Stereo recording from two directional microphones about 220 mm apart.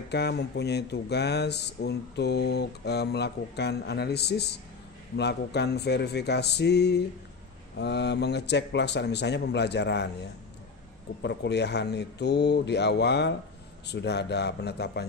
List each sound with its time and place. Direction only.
0.1 s speech: 50° left (ahead or behind)
11.2 s speech: 50° left (ahead or behind)